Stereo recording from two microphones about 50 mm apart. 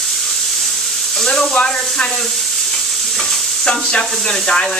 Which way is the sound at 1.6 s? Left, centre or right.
Centre.